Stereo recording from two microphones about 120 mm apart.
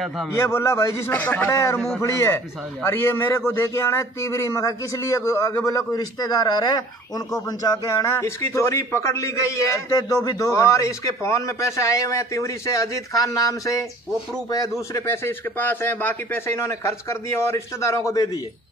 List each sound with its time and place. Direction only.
0.4 s a man's voice: 20° left (ahead or behind)